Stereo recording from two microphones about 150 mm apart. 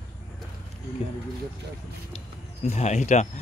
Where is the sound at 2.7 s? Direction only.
50° left (ahead or behind).